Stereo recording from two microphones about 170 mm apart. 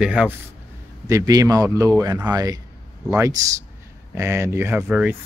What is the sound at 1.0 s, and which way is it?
Speech, 20° right (ahead or behind).